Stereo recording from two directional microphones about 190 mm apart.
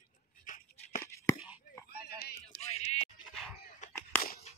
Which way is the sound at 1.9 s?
55° left (ahead or behind).